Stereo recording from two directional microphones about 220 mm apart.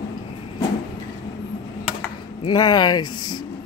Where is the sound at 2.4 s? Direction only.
20° left (ahead or behind).